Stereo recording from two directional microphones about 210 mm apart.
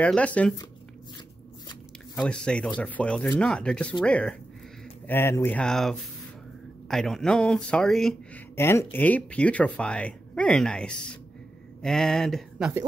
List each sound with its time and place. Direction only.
0.0 s speech: 5° left (ahead or behind)
2.1 s speech: 5° left (ahead or behind)